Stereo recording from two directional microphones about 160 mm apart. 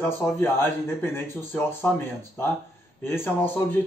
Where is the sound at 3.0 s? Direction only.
15° left (ahead or behind).